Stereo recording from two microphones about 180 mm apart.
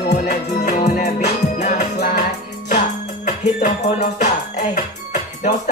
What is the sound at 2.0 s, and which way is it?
Music, 55° left (ahead or behind).